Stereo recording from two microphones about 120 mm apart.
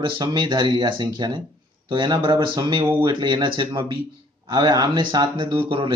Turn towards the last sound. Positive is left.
turn(degrees=-45)  # may be behind; listen again after turning